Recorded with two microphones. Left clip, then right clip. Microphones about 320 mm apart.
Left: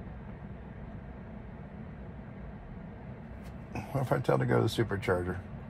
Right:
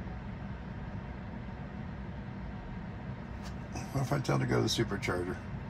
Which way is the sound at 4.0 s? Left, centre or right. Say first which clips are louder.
Left 4 dB; left.